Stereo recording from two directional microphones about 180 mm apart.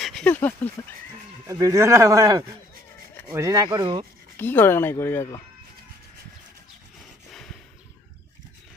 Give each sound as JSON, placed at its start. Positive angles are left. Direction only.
{"t": 0.0, "sound": "a sound", "side_deg": 5}
{"t": 1.5, "sound": "speech", "side_deg": -20}
{"t": 4.4, "sound": "speech", "side_deg": 10}